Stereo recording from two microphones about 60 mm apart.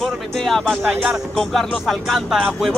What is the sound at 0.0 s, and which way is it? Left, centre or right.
Music, centre.